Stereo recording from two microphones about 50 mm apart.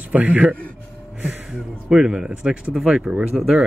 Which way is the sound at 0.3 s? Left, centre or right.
Right.